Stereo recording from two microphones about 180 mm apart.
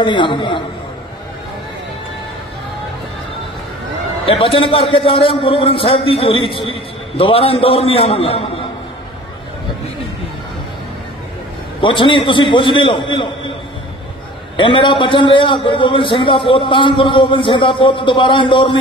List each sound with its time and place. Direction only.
0.0 s a man's voice: 25° left (ahead or behind)
4.3 s a man's voice: 30° left (ahead or behind)
11.8 s a man's voice: 25° left (ahead or behind)
14.6 s a man's voice: 25° left (ahead or behind)